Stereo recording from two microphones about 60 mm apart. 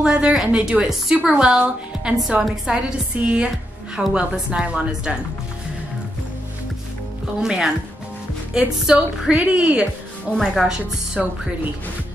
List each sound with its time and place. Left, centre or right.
0.0 s a woman's voice: centre
3.2 s a woman's voice: centre
7.3 s a woman's voice: centre
10.4 s a woman's voice: centre